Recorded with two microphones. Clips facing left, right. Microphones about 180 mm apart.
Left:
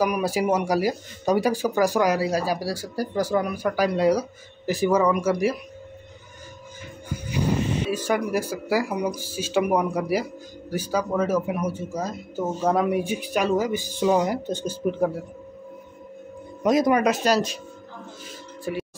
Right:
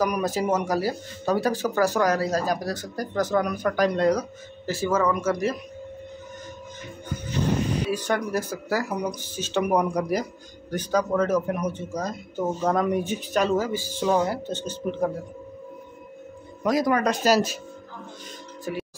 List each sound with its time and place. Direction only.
0.0 s speech: 10° left (ahead or behind)
7.2 s music: 10° left (ahead or behind)
8.1 s speech: 10° left (ahead or behind)
16.6 s speech: 20° left (ahead or behind)
17.0 s speech: centre (ahead or behind)